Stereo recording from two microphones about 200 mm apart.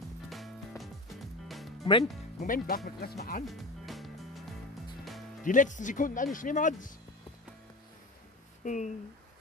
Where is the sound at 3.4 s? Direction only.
Centre (ahead or behind).